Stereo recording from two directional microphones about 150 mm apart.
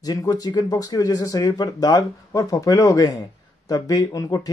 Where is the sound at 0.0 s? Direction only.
25° left (ahead or behind).